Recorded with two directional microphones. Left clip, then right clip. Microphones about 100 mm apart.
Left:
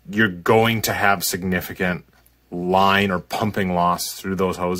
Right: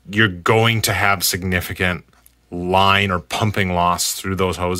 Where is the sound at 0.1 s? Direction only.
35° right (ahead or behind).